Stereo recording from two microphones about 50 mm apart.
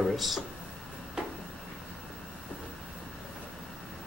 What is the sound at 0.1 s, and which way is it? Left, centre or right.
Speech, centre.